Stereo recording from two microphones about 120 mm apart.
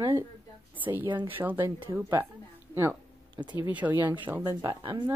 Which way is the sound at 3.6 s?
15° right (ahead or behind).